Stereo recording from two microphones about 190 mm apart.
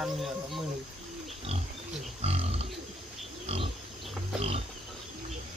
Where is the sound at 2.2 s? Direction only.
30° right (ahead or behind).